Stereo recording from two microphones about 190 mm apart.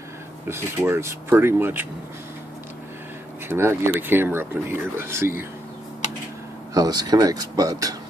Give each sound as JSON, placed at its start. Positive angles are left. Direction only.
{"t": 0.5, "sound": "speech", "side_deg": -15}
{"t": 3.4, "sound": "speech", "side_deg": -15}
{"t": 6.7, "sound": "speech", "side_deg": -20}